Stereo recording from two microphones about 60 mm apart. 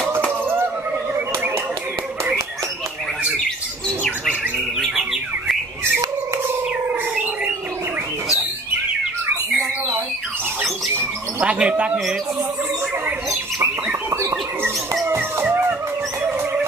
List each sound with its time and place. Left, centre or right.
11.4 s speech: centre
14.1 s bird: right
15.4 s music: right